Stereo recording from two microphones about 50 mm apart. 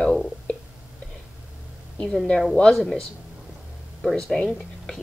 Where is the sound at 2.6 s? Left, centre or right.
Centre.